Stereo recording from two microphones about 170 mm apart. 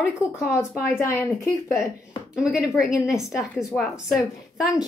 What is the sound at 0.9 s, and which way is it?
Speech, 15° left (ahead or behind).